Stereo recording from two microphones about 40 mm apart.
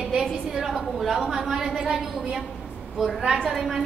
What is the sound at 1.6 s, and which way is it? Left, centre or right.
Speech, centre.